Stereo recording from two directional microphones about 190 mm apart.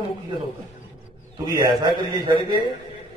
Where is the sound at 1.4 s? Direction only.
15° right (ahead or behind).